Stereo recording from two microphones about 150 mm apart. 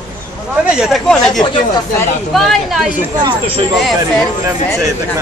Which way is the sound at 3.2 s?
35° right (ahead or behind).